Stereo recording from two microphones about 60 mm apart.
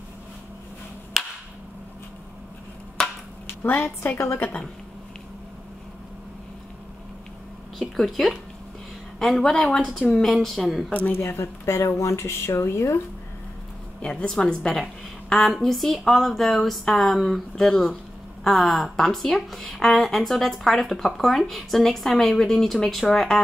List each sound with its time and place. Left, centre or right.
1.1 s a sound: centre
3.0 s chop: centre
3.6 s a woman's voice: left
7.9 s speech: centre
10.0 s speech: centre
10.9 s a woman's voice: left
11.1 s speech: left
14.3 s a woman's voice: centre